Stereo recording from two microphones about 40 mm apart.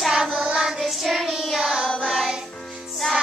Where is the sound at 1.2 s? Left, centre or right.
Centre.